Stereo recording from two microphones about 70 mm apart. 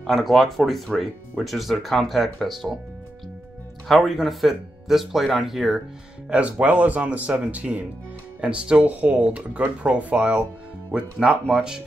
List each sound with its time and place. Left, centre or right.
0.0 s speech: centre
3.8 s speech: centre
6.6 s speech: right